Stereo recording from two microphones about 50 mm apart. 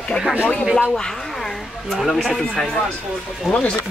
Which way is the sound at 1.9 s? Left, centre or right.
Centre.